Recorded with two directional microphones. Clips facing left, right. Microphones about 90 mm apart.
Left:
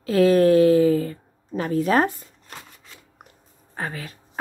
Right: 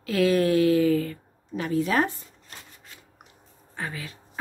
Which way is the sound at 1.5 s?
40° left (ahead or behind).